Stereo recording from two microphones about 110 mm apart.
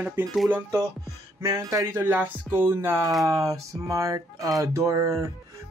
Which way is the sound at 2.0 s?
15° right (ahead or behind).